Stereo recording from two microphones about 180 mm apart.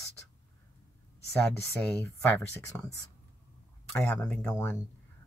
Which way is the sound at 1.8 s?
10° left (ahead or behind).